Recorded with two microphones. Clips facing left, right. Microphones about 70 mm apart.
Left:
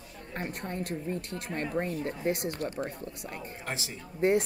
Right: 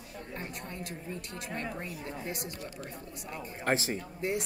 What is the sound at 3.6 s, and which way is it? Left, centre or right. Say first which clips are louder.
Speech: right 10 dB; right.